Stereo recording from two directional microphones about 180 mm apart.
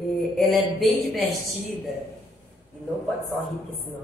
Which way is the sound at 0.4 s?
Centre (ahead or behind).